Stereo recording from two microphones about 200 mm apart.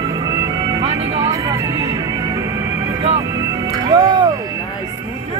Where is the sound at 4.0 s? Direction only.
20° right (ahead or behind).